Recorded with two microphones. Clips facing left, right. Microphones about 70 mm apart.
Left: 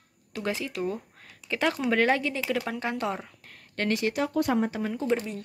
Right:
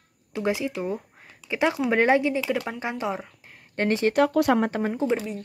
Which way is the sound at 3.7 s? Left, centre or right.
Right.